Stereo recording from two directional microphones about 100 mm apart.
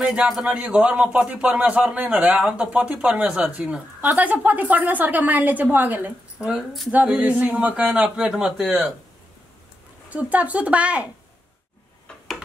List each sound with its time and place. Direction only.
0.0 s a man's voice: 10° right (ahead or behind)
6.5 s speech: centre (ahead or behind)
7.1 s a man's voice: 10° right (ahead or behind)
10.0 s a man's voice: 15° right (ahead or behind)